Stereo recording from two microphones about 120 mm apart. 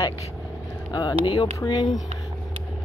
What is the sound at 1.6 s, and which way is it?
Speech, 40° left (ahead or behind).